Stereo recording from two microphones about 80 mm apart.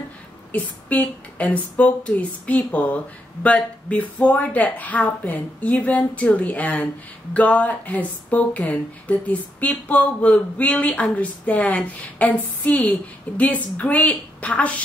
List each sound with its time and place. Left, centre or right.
0.5 s a woman's voice: centre